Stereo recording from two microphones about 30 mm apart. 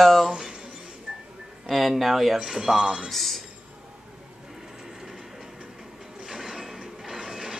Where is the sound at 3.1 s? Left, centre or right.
Centre.